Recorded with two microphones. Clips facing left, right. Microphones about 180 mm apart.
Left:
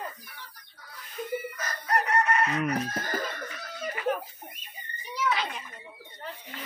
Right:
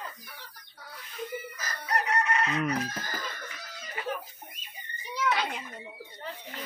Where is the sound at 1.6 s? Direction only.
55° left (ahead or behind).